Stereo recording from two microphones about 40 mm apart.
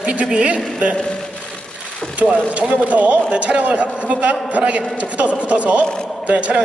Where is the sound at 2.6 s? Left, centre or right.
Right.